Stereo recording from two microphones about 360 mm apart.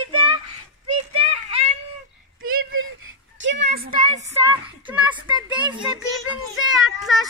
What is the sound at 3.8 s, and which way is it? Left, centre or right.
Speech, centre.